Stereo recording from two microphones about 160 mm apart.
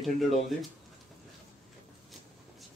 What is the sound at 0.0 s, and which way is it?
Speech, centre (ahead or behind).